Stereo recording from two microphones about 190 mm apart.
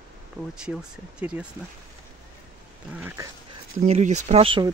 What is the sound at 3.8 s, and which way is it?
Speech, 40° right (ahead or behind).